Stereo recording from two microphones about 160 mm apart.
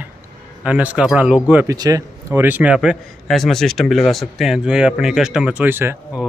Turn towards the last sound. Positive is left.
turn(degrees=-15)  # may be behind; listen again after turning